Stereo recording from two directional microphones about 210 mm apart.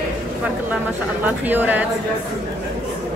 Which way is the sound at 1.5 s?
10° right (ahead or behind).